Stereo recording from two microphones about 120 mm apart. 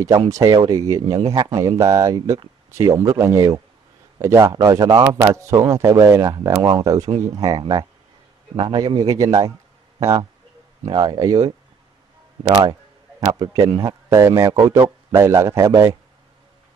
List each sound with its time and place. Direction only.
0.3 s a man's voice: 30° right (ahead or behind)
1.3 s a man's voice: 45° right (ahead or behind)
1.8 s a man's voice: 25° right (ahead or behind)
6.3 s a man's voice: 35° right (ahead or behind)
10.9 s a man's voice: 35° right (ahead or behind)